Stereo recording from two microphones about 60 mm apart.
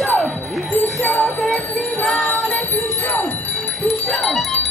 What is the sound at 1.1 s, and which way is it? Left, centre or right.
Music, centre.